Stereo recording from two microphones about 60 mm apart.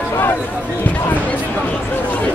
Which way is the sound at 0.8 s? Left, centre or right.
Left.